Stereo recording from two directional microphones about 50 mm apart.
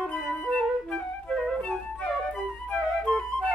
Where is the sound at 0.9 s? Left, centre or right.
Centre.